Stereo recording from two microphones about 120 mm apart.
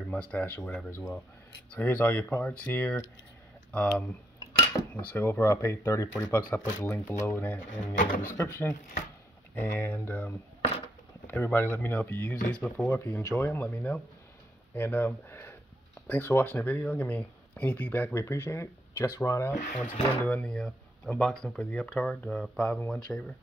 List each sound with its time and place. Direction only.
0.1 s speech: 10° left (ahead or behind); by 19.5 s 25° left (ahead or behind)
19.5 s speech: 90° left
19.9 s speech: 10° left (ahead or behind)